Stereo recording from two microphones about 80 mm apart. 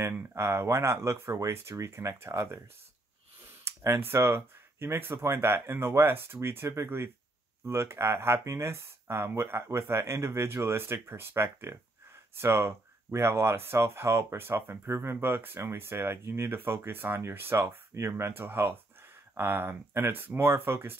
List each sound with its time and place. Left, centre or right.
0.3 s speech: right
3.6 s speech: right